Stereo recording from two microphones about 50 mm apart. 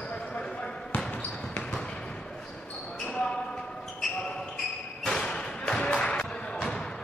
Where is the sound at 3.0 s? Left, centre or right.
Centre.